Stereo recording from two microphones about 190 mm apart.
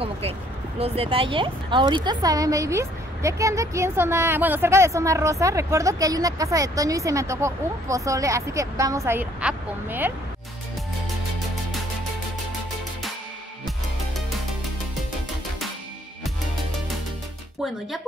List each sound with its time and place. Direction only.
0.7 s a woman's voice: 30° right (ahead or behind); by 10.1 s 10° right (ahead or behind)